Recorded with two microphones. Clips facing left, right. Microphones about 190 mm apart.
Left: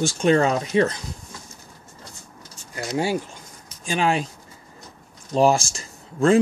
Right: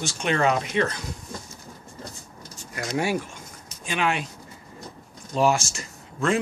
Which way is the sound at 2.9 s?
30° left (ahead or behind).